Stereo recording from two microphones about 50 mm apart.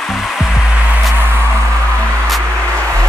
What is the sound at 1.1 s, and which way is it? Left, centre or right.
Music, right.